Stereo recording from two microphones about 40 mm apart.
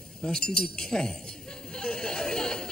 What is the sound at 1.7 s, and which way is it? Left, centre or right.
Chatter, centre.